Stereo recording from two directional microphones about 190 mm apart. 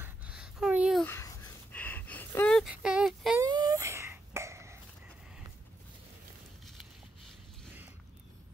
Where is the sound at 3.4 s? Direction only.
20° right (ahead or behind).